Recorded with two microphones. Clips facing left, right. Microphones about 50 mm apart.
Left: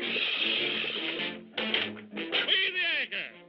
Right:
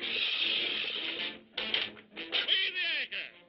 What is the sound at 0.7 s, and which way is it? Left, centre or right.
Music, centre.